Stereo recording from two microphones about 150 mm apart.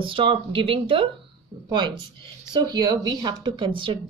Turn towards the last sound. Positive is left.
turn(degrees=-30)  # may be behind; listen again after turning